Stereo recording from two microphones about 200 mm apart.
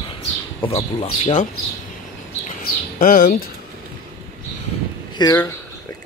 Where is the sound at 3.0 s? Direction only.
45° left (ahead or behind).